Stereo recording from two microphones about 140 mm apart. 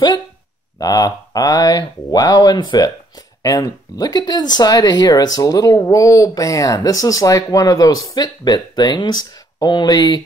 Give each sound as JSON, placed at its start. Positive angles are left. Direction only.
{"t": 0.7, "sound": "speech", "side_deg": 25}